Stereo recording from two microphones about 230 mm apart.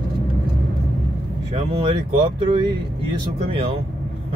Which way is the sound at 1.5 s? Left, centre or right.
Right.